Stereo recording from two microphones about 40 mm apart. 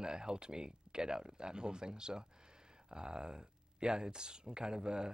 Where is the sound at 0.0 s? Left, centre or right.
Centre.